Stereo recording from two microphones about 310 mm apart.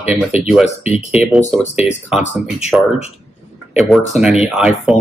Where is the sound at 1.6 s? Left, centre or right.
Left.